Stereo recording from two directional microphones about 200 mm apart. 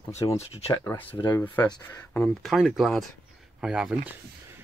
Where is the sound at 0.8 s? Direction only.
10° left (ahead or behind).